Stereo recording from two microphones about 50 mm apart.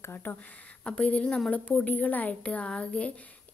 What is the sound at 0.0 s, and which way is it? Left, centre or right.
Speech, left.